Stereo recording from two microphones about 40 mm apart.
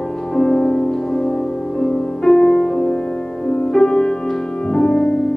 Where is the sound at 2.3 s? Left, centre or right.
Centre.